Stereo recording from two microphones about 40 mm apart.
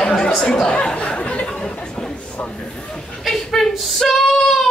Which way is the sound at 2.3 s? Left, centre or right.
Left.